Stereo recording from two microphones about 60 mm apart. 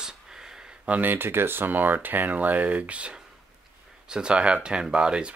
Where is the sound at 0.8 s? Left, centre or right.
Right; by 5.3 s centre.